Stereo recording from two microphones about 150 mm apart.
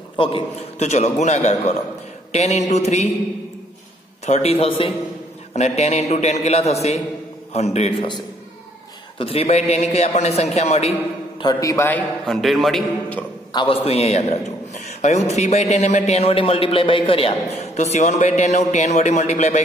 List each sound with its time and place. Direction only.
0.1 s a man's voice: 35° left (ahead or behind)
4.3 s a man's voice: 45° left (ahead or behind)
5.5 s a man's voice: 50° left (ahead or behind)
9.2 s a man's voice: 40° left (ahead or behind)
11.4 s a man's voice: 20° left (ahead or behind)
12.3 s a man's voice: centre (ahead or behind)
13.5 s a man's voice: 35° left (ahead or behind); by 19.6 s 50° left (ahead or behind)